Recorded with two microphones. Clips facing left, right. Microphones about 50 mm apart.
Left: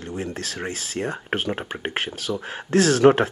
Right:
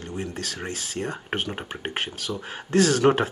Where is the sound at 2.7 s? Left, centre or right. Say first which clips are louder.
Left 2 dB; left.